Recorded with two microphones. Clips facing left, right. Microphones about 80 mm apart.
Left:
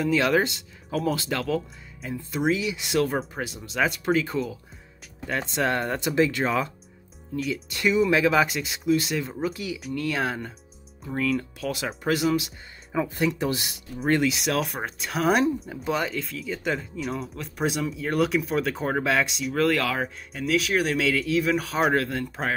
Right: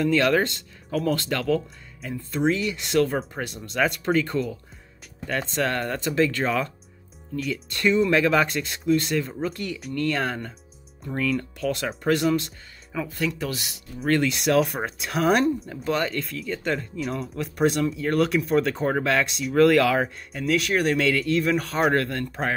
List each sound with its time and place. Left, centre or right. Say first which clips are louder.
0.0 s speech: right 1 dB; centre
12.9 s speech: left 3 dB; left
14.0 s speech: right 1 dB; centre